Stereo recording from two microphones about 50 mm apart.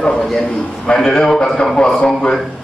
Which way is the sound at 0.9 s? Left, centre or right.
Centre.